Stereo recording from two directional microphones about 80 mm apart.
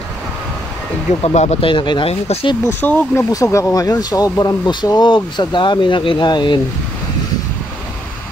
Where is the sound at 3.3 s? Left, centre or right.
Left.